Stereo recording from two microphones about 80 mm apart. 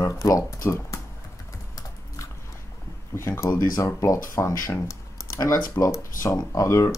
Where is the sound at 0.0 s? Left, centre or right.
Left.